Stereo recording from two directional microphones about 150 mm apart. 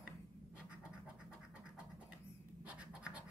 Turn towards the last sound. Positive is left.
turn(degrees=-10)  # may be behind; listen again after turning